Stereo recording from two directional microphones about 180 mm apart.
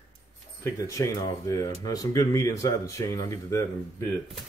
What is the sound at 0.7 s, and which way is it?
Speech, 20° left (ahead or behind).